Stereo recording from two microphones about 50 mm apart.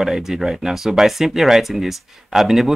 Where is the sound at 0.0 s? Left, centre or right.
Centre.